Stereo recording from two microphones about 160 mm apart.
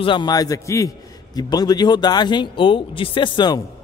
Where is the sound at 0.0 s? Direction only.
30° left (ahead or behind).